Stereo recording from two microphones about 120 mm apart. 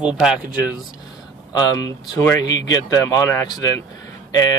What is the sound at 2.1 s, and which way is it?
Speech, 35° left (ahead or behind).